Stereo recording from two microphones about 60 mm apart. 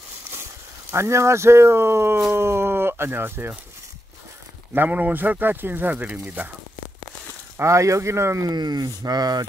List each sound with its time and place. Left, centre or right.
0.9 s speech: right
2.3 s a sound: right
4.7 s speech: right
7.5 s speech: right
8.5 s speech: right